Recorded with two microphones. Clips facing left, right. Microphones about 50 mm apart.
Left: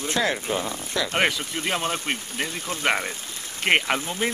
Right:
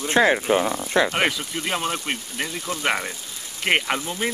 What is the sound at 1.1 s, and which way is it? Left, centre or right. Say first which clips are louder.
Speech: even; centre.